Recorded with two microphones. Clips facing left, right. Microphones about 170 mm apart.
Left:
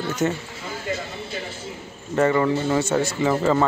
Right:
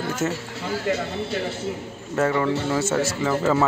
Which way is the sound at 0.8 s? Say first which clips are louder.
Right 4 dB; 65° right (ahead or behind).